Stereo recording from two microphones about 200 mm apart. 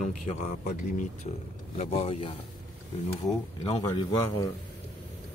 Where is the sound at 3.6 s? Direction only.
25° left (ahead or behind).